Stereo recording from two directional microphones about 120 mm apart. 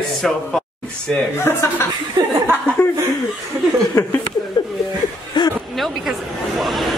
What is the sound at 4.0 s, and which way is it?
Speech, 35° left (ahead or behind).